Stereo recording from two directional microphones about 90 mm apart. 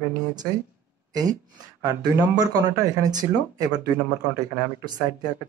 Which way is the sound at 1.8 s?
45° right (ahead or behind).